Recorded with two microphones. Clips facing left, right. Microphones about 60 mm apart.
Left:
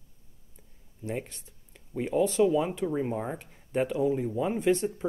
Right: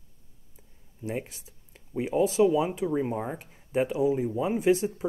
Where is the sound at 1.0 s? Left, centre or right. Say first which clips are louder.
Right 1 dB; centre.